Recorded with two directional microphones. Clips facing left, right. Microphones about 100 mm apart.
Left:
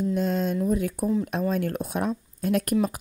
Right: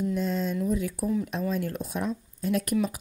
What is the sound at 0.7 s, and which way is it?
Speech, 50° left (ahead or behind).